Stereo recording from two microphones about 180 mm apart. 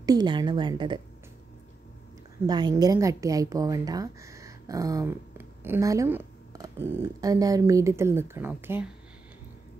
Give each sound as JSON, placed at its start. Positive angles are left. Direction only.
{"t": 0.0, "sound": "a woman's voice", "side_deg": -20}
{"t": 2.4, "sound": "a woman's voice", "side_deg": -25}